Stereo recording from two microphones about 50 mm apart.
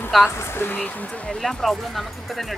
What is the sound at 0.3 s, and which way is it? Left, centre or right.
Speech, left.